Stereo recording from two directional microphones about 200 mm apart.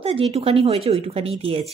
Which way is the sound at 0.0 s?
30° right (ahead or behind).